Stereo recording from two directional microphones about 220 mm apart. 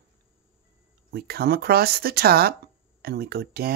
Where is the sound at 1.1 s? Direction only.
45° right (ahead or behind).